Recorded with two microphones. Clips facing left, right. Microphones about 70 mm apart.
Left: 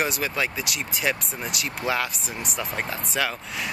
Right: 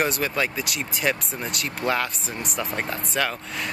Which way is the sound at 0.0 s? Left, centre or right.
Centre.